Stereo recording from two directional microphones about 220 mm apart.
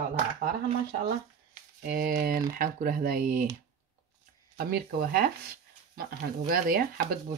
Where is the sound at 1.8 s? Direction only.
40° right (ahead or behind).